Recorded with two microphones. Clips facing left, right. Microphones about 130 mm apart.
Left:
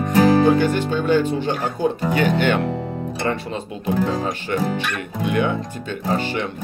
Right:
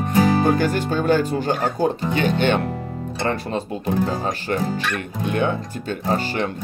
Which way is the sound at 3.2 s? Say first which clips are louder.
Right 2 dB; 35° right (ahead or behind).